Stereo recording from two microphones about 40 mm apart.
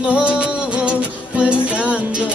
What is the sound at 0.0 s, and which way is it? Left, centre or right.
Music, right.